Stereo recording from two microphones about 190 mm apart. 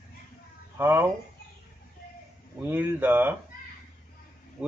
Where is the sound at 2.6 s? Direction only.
10° right (ahead or behind).